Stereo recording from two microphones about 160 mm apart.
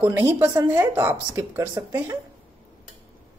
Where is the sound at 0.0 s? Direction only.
10° right (ahead or behind).